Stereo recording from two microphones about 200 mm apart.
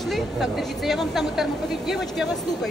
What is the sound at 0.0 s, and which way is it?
A woman's voice, centre (ahead or behind).